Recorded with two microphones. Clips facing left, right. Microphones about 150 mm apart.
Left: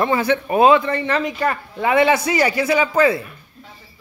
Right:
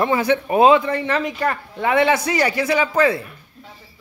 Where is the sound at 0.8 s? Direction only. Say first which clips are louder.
Left 1 dB; 5° right (ahead or behind).